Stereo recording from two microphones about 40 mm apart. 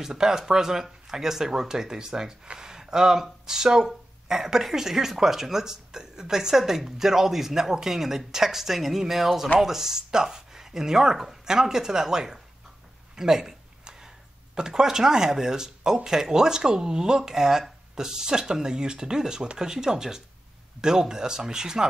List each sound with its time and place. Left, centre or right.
0.0 s speech: centre